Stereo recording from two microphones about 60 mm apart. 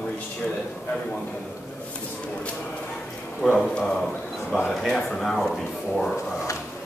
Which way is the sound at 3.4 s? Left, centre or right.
Centre.